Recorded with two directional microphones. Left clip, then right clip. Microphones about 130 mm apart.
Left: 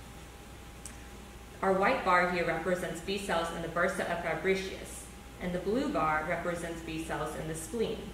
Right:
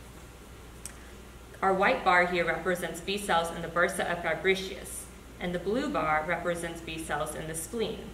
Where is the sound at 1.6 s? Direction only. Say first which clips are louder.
Right 3 dB; 35° right (ahead or behind).